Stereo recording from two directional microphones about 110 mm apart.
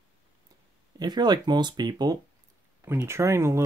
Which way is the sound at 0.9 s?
40° right (ahead or behind).